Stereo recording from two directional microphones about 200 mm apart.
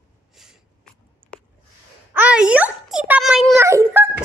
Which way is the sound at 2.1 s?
5° right (ahead or behind).